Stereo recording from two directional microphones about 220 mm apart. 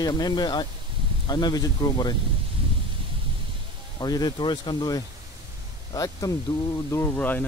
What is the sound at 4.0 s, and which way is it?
Speech, 20° left (ahead or behind).